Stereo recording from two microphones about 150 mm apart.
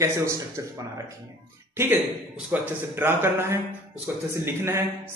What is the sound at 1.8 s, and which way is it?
A man's voice, 15° right (ahead or behind).